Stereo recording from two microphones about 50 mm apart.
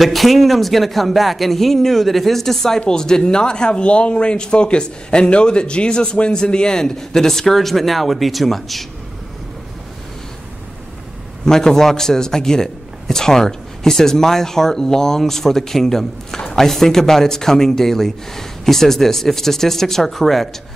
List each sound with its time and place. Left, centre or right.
0.0 s speech: centre
11.4 s speech: centre